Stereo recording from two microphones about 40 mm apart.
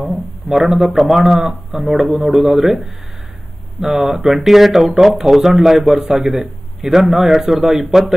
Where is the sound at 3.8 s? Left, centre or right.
Centre.